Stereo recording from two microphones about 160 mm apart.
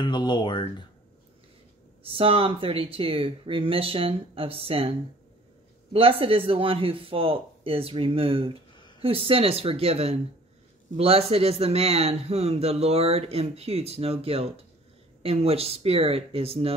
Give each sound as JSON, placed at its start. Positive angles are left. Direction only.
{"t": 0.0, "sound": "speech", "side_deg": 30}
{"t": 2.1, "sound": "speech", "side_deg": -35}
{"t": 5.9, "sound": "speech", "side_deg": -35}